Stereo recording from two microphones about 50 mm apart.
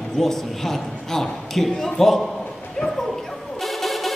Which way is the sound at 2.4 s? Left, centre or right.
Centre.